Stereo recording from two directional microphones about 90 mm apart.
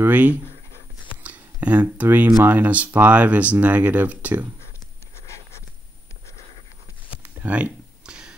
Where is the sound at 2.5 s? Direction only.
20° right (ahead or behind).